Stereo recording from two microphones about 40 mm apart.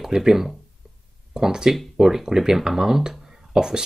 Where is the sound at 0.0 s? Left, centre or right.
Centre.